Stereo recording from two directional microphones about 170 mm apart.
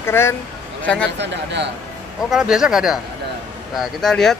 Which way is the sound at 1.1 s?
90° right.